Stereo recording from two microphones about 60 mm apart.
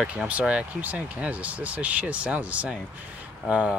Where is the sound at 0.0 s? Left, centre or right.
Right.